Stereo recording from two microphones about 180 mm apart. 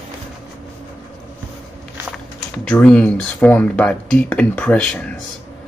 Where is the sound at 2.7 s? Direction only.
5° left (ahead or behind).